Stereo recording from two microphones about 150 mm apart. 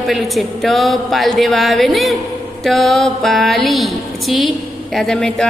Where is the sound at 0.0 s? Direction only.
Centre (ahead or behind).